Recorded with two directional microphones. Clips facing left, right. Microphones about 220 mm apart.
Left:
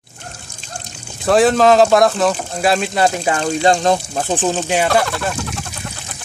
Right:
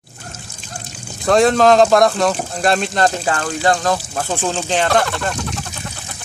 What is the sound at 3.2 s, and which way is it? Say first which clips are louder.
Speech: left 3 dB; 20° left (ahead or behind).